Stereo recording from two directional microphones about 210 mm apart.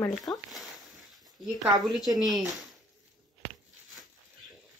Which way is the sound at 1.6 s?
Centre (ahead or behind).